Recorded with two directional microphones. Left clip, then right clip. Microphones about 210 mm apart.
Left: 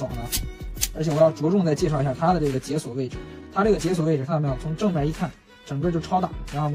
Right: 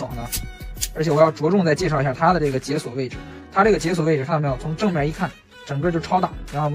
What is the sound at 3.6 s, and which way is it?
Speech, 15° left (ahead or behind).